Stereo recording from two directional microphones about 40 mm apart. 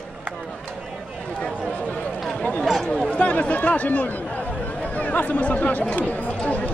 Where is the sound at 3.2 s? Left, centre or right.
Left.